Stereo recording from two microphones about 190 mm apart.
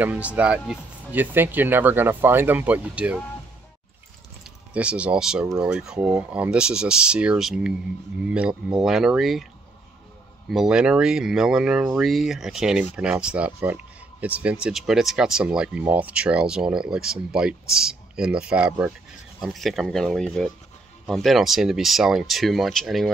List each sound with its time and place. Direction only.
0.0 s speech: 5° right (ahead or behind)
4.7 s speech: 5° right (ahead or behind)
10.5 s speech: 5° right (ahead or behind)